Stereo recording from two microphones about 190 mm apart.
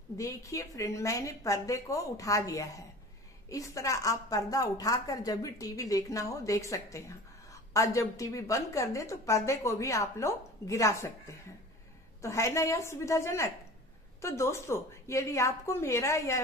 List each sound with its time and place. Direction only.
0.2 s a woman's voice: 15° left (ahead or behind)
12.2 s a woman's voice: 15° left (ahead or behind)